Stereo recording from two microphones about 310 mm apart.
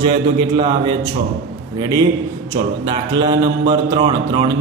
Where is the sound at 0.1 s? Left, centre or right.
Centre.